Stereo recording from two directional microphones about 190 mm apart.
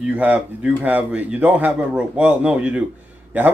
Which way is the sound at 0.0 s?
5° right (ahead or behind).